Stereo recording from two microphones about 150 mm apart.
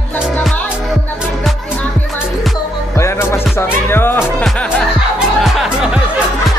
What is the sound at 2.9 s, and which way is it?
Music, 15° left (ahead or behind).